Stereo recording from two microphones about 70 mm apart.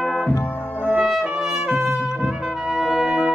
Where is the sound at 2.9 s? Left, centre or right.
Centre.